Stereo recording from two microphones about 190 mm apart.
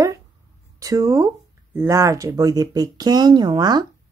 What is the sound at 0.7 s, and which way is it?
Speech, 20° right (ahead or behind).